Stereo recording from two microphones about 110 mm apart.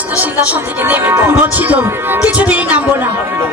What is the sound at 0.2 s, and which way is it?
Speech, 15° right (ahead or behind).